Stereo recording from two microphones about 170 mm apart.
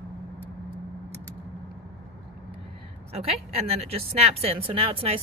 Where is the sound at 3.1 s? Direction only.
35° right (ahead or behind).